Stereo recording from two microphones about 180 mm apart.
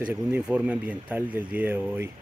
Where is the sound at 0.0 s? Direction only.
10° right (ahead or behind).